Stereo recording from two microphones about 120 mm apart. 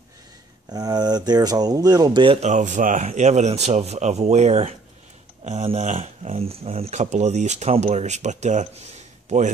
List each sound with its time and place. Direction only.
0.7 s speech: 35° right (ahead or behind)
2.4 s speech: 90° right